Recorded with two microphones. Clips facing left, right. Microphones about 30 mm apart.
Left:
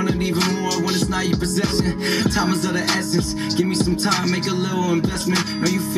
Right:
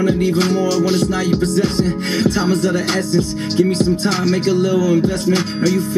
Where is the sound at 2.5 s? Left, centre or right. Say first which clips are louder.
Right 5 dB; centre.